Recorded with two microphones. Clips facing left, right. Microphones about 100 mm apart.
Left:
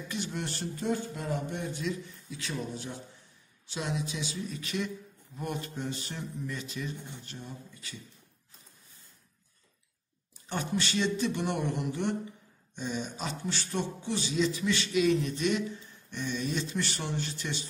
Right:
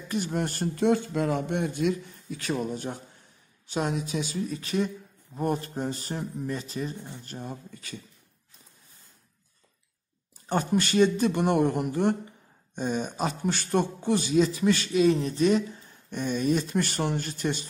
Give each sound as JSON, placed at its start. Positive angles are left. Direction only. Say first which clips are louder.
{"t": 0.1, "sound": "a man's voice", "louder": "right 8 dB", "side_deg": -45}
{"t": 0.7, "sound": "a man's voice", "louder": "right 9 dB", "side_deg": -90}
{"t": 7.2, "sound": "a man's voice", "louder": "right 6 dB", "side_deg": -50}
{"t": 10.5, "sound": "a man's voice", "louder": "right 7 dB", "side_deg": -45}